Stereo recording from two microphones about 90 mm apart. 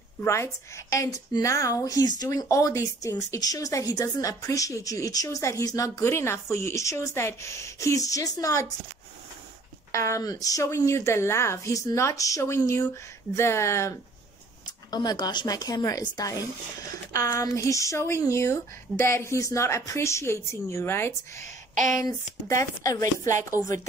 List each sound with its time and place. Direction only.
0.2 s speech: 30° left (ahead or behind)
9.9 s speech: 35° left (ahead or behind)
14.9 s a woman's voice: 50° left (ahead or behind); by 21.5 s 25° left (ahead or behind)
22.6 s speech: 35° left (ahead or behind)